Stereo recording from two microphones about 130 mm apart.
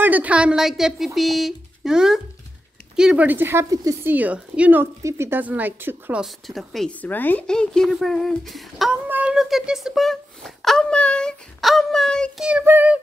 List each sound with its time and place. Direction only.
0.0 s speech: 10° right (ahead or behind)
6.2 s a woman's voice: centre (ahead or behind)
9.0 s speech: 10° right (ahead or behind); by 12.4 s 5° left (ahead or behind)
12.4 s speech: 15° right (ahead or behind)